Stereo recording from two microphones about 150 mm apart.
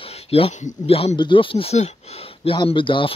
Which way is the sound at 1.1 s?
30° left (ahead or behind).